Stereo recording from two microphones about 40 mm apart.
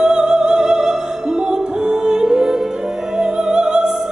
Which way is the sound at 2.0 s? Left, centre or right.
Centre.